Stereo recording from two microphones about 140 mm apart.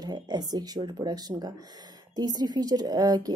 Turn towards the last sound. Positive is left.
turn(degrees=-25)  # may be behind; listen again after turning